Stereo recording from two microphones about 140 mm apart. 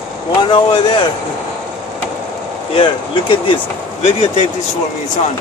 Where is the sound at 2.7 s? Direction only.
40° left (ahead or behind).